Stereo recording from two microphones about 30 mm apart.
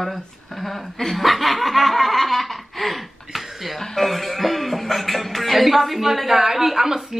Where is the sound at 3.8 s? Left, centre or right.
Centre.